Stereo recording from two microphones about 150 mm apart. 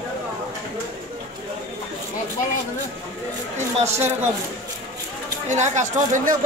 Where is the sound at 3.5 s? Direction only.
45° right (ahead or behind).